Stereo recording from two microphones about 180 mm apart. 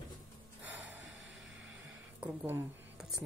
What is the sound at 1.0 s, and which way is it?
Music, 90° right.